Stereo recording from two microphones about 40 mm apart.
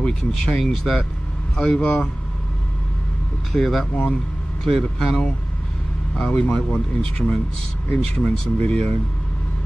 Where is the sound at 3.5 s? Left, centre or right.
Centre.